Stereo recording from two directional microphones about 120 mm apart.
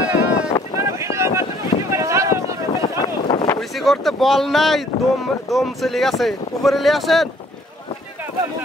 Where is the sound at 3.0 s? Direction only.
40° left (ahead or behind).